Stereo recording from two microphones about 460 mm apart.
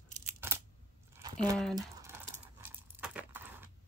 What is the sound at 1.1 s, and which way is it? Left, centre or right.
Crumpling, centre.